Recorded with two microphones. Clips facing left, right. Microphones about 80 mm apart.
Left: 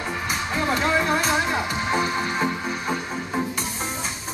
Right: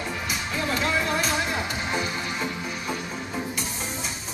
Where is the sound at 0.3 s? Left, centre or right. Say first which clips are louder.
Left 5 dB; left.